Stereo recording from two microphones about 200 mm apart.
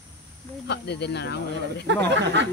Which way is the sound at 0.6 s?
55° left (ahead or behind).